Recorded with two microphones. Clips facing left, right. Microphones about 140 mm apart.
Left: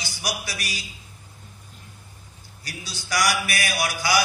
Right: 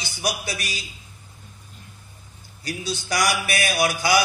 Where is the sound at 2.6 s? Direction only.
25° right (ahead or behind).